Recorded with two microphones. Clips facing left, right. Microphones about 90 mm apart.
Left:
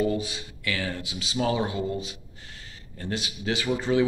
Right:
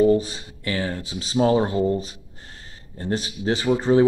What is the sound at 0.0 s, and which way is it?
A man's voice, 35° right (ahead or behind).